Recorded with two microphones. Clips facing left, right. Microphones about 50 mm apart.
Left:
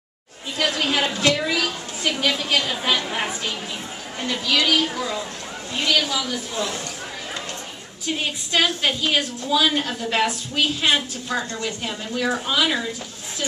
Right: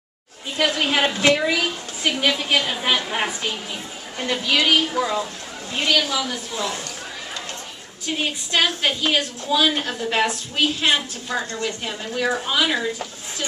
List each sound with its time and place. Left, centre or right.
0.6 s a woman's voice: centre
4.3 s a woman's voice: centre
6.5 s speech: right
8.1 s a woman's voice: centre